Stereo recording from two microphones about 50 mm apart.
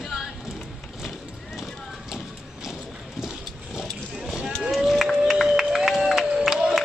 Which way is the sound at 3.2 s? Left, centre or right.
Centre.